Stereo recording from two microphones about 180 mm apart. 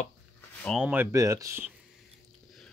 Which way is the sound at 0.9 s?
10° right (ahead or behind).